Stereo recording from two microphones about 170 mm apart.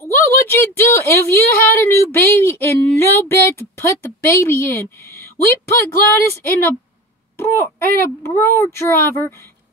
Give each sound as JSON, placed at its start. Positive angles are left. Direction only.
{"t": 0.2, "sound": "speech", "side_deg": 15}